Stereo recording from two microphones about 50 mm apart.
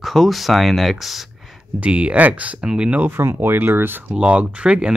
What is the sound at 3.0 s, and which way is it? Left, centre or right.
Speech, right.